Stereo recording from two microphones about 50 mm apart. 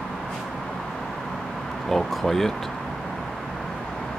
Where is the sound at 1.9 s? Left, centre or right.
Centre.